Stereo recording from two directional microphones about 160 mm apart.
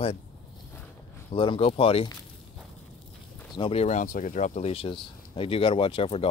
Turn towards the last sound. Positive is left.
turn(degrees=35)  # may be behind; listen again after turning